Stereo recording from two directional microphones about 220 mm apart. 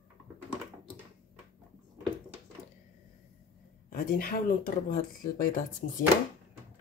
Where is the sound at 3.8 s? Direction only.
40° left (ahead or behind).